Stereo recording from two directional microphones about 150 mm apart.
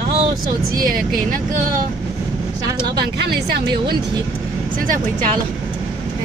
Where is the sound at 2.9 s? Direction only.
90° right.